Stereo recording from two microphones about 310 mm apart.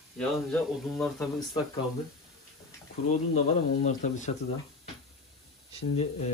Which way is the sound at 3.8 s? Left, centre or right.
Left.